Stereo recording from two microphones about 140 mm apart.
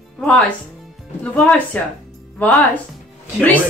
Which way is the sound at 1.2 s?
10° left (ahead or behind).